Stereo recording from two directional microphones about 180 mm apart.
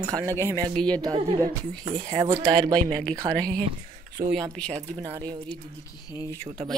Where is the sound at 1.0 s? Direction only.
25° right (ahead or behind).